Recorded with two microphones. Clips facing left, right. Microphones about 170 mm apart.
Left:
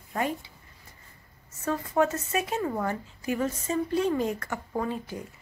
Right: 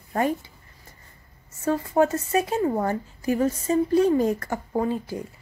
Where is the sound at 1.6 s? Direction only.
30° right (ahead or behind).